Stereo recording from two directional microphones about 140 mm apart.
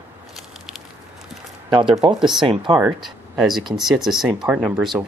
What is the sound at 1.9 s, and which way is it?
Speech, 30° right (ahead or behind).